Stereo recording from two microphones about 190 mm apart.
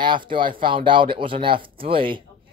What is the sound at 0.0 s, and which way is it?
A man's voice, 25° right (ahead or behind).